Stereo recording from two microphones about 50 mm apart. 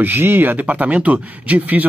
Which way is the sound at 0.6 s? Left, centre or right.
Right.